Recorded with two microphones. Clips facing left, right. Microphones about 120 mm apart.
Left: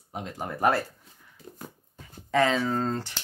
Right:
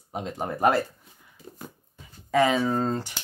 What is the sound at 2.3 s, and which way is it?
Speech, 10° right (ahead or behind).